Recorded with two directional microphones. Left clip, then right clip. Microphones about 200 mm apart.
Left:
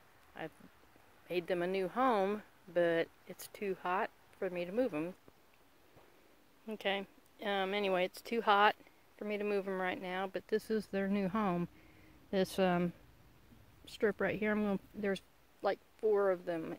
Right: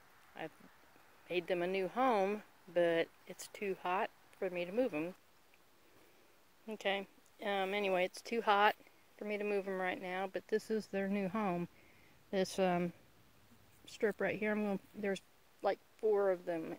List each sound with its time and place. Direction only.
0.3 s a sound: 5° left (ahead or behind)
1.2 s speech: centre (ahead or behind)
6.7 s speech: 5° left (ahead or behind)